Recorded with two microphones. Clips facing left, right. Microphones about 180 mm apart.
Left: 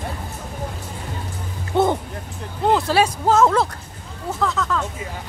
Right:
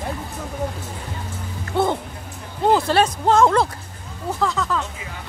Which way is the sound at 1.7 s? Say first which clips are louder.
Left 2 dB; 20° left (ahead or behind).